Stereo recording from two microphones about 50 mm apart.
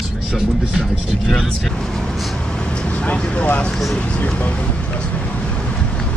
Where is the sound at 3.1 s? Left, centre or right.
Left.